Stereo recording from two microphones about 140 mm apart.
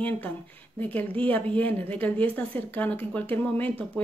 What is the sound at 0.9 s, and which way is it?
Speech, 10° left (ahead or behind).